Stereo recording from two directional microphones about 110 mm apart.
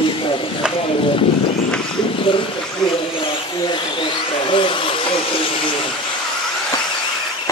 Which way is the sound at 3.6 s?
50° left (ahead or behind).